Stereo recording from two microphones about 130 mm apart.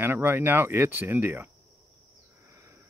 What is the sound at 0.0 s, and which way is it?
Speech, 15° right (ahead or behind).